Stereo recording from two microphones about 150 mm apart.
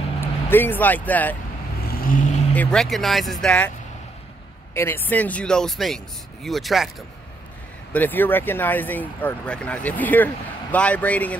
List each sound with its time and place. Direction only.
0.2 s speech: 15° left (ahead or behind)
1.9 s vehicle: 70° left (ahead or behind)
2.5 s speech: 5° left (ahead or behind)
4.7 s speech: 15° left (ahead or behind)
7.9 s speech: 10° left (ahead or behind)